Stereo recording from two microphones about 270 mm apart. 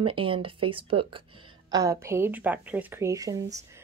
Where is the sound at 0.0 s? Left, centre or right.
Centre.